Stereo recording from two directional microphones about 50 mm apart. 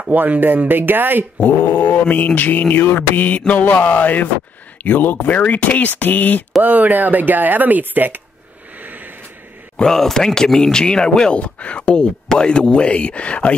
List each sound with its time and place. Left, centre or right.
0.1 s speech: right
1.4 s mantra: left
6.6 s speech: right
8.8 s vehicle: right
9.8 s speech: centre
11.3 s speech: left